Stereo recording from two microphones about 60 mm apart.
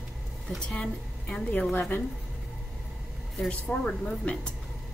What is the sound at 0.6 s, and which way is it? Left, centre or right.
Speech, centre.